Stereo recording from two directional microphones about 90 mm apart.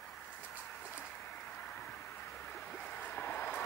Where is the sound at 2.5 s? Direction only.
20° left (ahead or behind).